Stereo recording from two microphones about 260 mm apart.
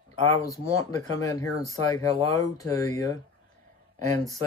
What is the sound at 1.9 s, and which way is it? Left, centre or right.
Speech, centre.